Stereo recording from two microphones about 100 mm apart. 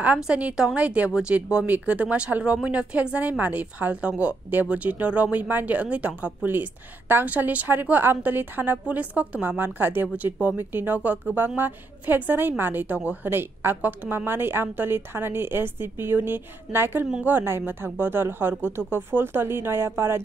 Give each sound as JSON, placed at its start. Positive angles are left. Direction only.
{"t": 0.0, "sound": "a woman's voice", "side_deg": -15}